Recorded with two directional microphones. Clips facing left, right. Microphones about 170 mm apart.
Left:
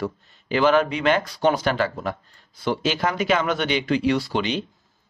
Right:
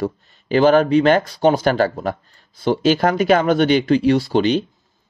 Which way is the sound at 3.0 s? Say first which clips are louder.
Right 6 dB; 50° right (ahead or behind).